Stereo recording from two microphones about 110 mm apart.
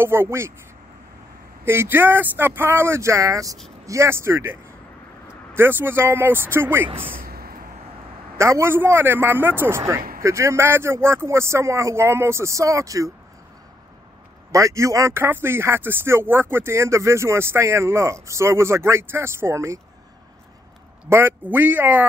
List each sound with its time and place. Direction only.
0.0 s speech: 20° right (ahead or behind)
1.6 s speech: 20° right (ahead or behind)
5.6 s speech: 20° right (ahead or behind)
8.4 s speech: 25° right (ahead or behind)
14.5 s speech: 30° right (ahead or behind)
21.1 s speech: 20° right (ahead or behind)